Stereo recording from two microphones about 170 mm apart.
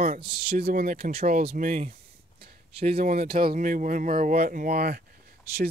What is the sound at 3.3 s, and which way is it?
Speech, 60° right (ahead or behind).